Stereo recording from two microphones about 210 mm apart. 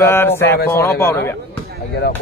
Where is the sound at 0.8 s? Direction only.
10° left (ahead or behind).